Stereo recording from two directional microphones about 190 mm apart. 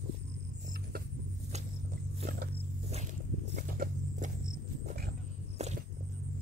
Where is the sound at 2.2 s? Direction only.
55° right (ahead or behind).